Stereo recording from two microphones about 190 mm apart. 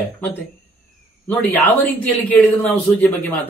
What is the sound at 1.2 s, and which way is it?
Speech, 10° left (ahead or behind).